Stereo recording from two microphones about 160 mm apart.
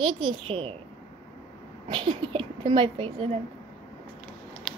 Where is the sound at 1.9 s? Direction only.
35° right (ahead or behind).